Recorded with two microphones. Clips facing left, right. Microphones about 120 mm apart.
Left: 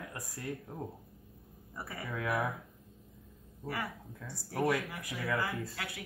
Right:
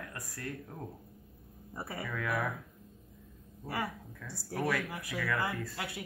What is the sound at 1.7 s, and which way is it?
Speech, 25° right (ahead or behind).